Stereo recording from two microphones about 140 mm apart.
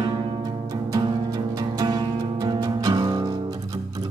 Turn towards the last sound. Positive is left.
turn(degrees=-30)  # may be behind; listen again after turning